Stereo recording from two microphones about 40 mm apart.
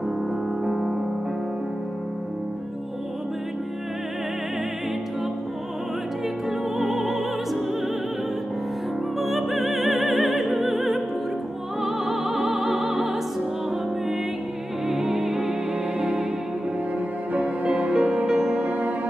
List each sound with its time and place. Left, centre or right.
0.7 s music: centre
6.8 s music: centre
9.2 s music: centre
14.9 s music: centre
17.6 s music: right
17.9 s music: right
18.6 s music: right